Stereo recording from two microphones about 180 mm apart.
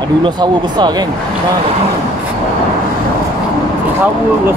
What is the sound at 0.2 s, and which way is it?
Speech, 25° right (ahead or behind).